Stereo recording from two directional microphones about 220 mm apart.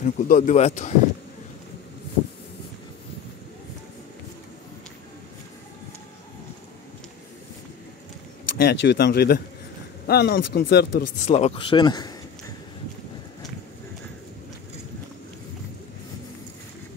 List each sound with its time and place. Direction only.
0.0 s speech: 35° left (ahead or behind)
8.5 s speech: 50° left (ahead or behind)
11.2 s speech: 30° left (ahead or behind)